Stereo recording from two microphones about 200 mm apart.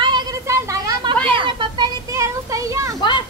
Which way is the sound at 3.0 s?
25° left (ahead or behind).